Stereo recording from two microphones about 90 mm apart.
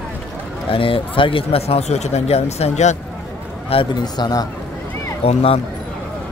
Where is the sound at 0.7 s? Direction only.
80° left.